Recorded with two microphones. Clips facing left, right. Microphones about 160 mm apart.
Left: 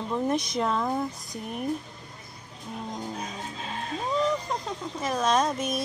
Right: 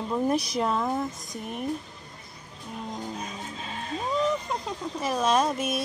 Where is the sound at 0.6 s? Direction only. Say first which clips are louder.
Even; 5° right (ahead or behind).